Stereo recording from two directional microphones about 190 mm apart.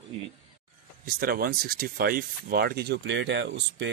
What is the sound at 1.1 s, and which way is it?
Speech, 50° right (ahead or behind).